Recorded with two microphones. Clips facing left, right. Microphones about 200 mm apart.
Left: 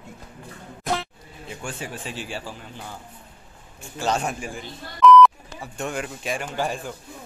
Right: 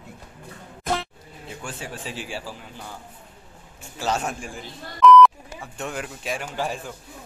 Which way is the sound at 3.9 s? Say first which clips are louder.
Left 1 dB; 5° right (ahead or behind).